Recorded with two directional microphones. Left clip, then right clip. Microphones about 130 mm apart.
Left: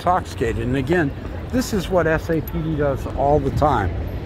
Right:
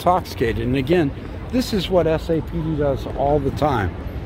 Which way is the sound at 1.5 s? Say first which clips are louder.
Right 1 dB; 25° right (ahead or behind).